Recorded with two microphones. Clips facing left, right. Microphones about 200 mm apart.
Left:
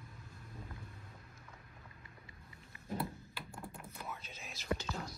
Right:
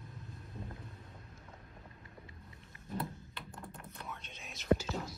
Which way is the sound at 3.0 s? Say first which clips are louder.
Right 3 dB; centre (ahead or behind).